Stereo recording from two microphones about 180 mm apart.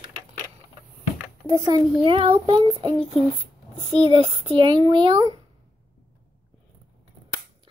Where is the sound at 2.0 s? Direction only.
30° right (ahead or behind).